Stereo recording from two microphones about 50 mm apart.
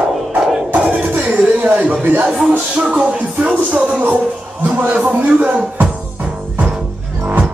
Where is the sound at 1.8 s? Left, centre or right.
Right.